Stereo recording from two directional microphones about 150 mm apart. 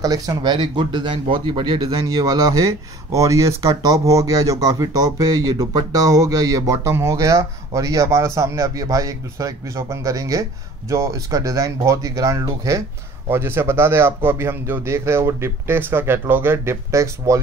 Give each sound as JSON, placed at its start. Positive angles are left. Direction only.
{"t": 0.0, "sound": "a man's voice", "side_deg": -25}